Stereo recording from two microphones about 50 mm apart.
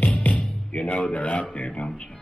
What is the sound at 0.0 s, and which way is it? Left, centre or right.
Music, left.